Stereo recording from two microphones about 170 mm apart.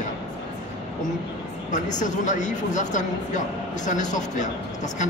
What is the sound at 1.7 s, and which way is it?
A man's voice, 45° left (ahead or behind).